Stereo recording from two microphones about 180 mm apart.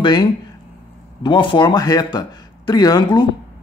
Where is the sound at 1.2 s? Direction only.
25° left (ahead or behind).